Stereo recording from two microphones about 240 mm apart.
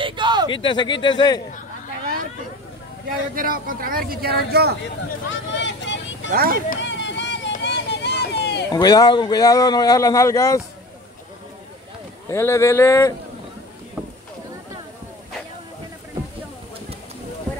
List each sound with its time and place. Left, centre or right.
0.0 s a sound: centre
0.5 s speech: centre
3.3 s speech: right
5.5 s vehicle: left
6.3 s speech: right
6.7 s vehicle: left
8.7 s speech: centre
12.3 s speech: centre